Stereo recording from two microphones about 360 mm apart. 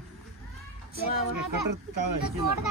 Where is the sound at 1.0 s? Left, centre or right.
Right.